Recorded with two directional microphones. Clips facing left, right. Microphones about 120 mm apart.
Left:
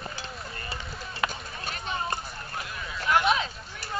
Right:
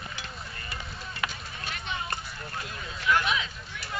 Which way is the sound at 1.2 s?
40° left (ahead or behind).